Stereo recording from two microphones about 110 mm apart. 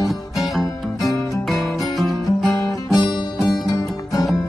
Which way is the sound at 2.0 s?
Centre (ahead or behind).